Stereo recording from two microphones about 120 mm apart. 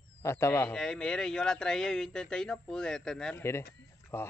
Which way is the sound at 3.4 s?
20° left (ahead or behind).